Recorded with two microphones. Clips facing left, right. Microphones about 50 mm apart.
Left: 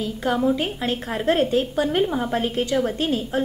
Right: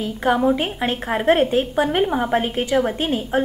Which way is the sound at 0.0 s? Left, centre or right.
Right.